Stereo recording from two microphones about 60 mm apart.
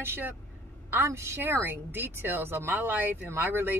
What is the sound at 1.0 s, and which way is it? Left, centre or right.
Speech, right.